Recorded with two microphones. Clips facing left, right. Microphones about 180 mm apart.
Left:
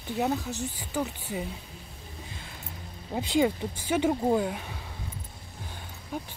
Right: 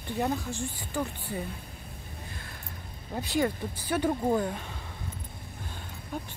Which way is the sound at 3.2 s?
20° left (ahead or behind).